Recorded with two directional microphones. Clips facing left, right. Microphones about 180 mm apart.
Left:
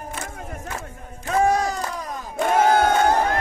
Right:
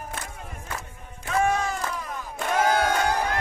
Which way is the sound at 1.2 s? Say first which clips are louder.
Left 4 dB; 40° left (ahead or behind).